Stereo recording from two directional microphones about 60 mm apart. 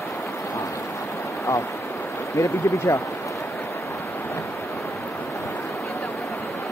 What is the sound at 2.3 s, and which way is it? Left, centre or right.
Speech, left.